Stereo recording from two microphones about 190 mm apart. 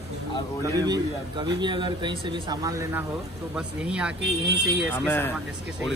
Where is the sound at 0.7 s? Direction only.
20° right (ahead or behind).